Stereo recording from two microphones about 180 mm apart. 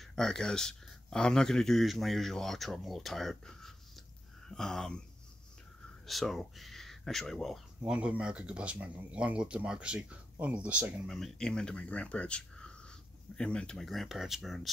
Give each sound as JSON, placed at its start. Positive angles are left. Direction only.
{"t": 0.0, "sound": "speech", "side_deg": 5}
{"t": 6.0, "sound": "speech", "side_deg": 0}